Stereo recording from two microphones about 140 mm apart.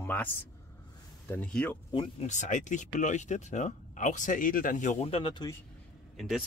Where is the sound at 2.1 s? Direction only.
55° left (ahead or behind).